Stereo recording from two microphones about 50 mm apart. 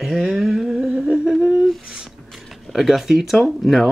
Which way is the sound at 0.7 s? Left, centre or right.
Centre.